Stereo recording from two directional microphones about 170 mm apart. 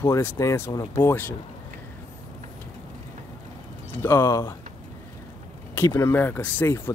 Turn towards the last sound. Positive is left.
turn(degrees=10)  # may be behind; listen again after turning